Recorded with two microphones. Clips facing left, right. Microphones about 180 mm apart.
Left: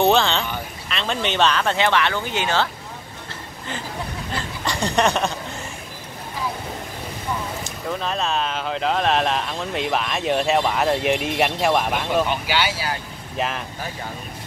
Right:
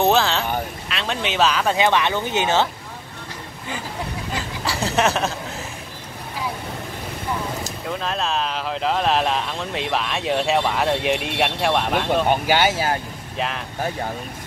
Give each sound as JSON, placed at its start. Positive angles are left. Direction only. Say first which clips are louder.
{"t": 0.0, "sound": "speech", "louder": "even", "side_deg": 0}
{"t": 4.3, "sound": "speech", "louder": "even", "side_deg": -5}
{"t": 7.9, "sound": "speech", "louder": "left 1 dB", "side_deg": 0}
{"t": 12.3, "sound": "speech", "louder": "right 5 dB", "side_deg": -45}
{"t": 13.4, "sound": "speech", "louder": "left 1 dB", "side_deg": 0}